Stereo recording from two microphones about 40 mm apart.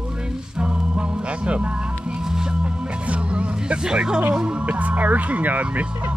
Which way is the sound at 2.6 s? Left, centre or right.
Right.